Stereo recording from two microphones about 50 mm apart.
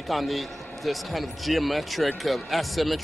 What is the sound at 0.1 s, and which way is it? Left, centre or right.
A man's voice, centre.